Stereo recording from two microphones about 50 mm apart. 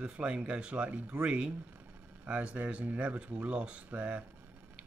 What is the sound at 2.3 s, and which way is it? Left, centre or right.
Speech, right.